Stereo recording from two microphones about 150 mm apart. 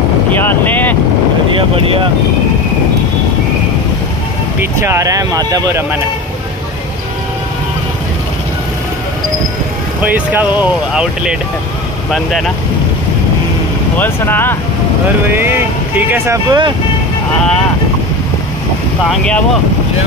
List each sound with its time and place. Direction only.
0.4 s speech: 10° left (ahead or behind)
4.6 s speech: 20° right (ahead or behind)
10.0 s speech: 10° right (ahead or behind)
13.9 s speech: 15° left (ahead or behind)
15.3 s speech: 15° right (ahead or behind)
16.4 s speech: 30° right (ahead or behind)
19.0 s speech: 5° left (ahead or behind)